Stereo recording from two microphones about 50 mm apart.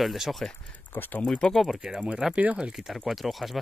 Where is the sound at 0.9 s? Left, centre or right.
Left.